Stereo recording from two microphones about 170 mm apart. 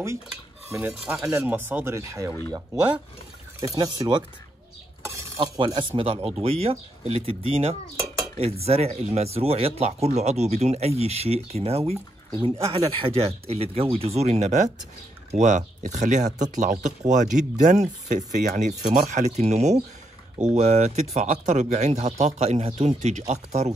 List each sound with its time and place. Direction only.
0.3 s cutlery: 10° right (ahead or behind)
3.6 s speech: 20° right (ahead or behind)
5.4 s speech: 30° right (ahead or behind)